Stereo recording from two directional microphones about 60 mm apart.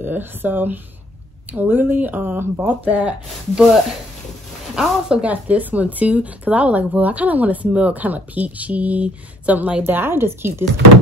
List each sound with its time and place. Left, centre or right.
0.0 s speech: right
4.7 s a woman's voice: centre
5.2 s speech: right
9.8 s speech: right